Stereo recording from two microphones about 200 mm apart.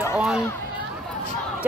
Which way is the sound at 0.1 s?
5° right (ahead or behind).